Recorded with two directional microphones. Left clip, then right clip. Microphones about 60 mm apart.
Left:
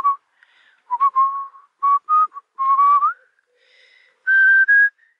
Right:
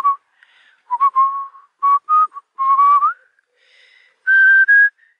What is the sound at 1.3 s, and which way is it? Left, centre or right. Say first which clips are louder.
Whistling: right 2 dB; left.